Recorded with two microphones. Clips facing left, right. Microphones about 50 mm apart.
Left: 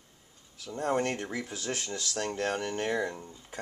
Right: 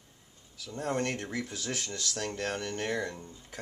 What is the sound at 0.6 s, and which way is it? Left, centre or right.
Speech, centre.